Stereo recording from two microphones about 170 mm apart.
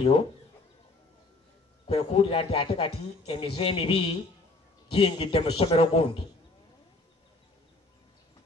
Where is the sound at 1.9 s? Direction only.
35° left (ahead or behind).